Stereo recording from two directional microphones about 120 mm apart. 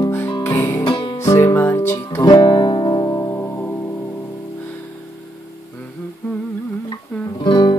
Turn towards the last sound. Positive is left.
turn(degrees=40)  # may be behind; listen again after turning